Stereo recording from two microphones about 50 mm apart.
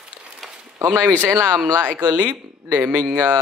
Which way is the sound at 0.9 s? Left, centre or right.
Right.